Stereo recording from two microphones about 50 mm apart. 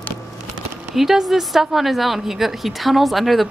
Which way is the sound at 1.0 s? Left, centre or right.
Centre.